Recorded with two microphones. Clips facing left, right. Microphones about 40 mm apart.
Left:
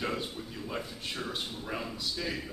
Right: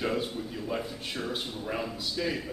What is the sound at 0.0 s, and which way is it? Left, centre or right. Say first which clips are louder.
A man's voice: right 4 dB; centre.